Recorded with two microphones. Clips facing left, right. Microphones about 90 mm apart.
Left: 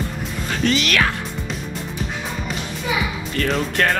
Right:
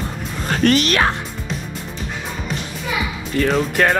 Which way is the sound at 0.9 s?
30° right (ahead or behind).